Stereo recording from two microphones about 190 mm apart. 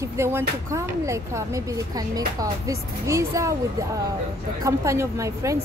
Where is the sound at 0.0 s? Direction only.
15° right (ahead or behind).